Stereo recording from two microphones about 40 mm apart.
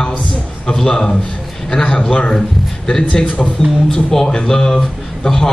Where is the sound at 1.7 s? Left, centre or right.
Left.